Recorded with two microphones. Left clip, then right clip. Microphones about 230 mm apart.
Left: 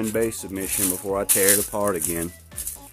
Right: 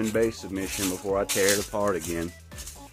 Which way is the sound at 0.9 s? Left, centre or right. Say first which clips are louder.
Left 1 dB; left.